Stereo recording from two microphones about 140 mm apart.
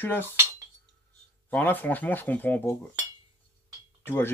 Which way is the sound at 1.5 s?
10° left (ahead or behind).